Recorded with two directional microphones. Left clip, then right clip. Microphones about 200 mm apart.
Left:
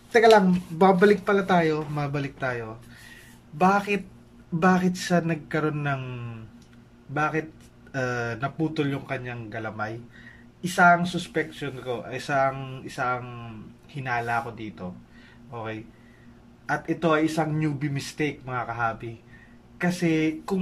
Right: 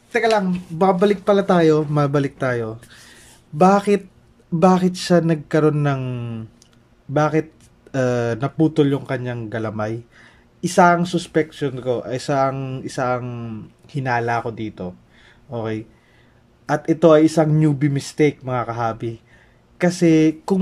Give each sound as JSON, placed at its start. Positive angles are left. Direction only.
{"t": 0.1, "sound": "speech", "side_deg": 0}